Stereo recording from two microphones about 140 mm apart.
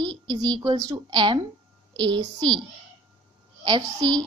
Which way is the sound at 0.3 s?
30° right (ahead or behind).